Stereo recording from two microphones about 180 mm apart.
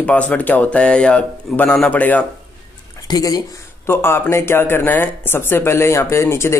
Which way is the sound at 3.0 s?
20° left (ahead or behind).